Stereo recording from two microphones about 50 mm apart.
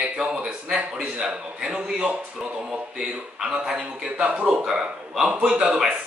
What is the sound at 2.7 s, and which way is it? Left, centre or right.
A man's voice, centre.